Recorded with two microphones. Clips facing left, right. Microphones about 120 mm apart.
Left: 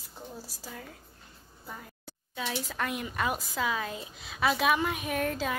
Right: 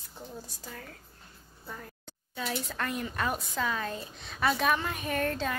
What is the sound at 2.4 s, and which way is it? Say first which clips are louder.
A woman's voice: even; centre (ahead or behind).